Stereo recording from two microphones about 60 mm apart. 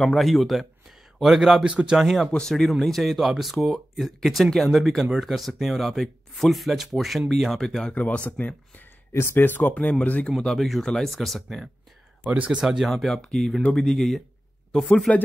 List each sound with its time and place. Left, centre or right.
0.0 s speech: centre
1.7 s speech: centre
2.0 s speech: centre
7.9 s speech: left
9.1 s speech: left
10.4 s speech: centre
12.3 s speech: right
12.6 s speech: centre
15.1 s speech: centre